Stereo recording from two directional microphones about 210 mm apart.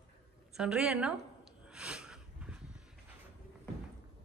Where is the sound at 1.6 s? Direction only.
5° right (ahead or behind).